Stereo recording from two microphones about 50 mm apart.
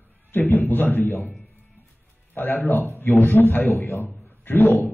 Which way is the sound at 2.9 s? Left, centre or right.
Left.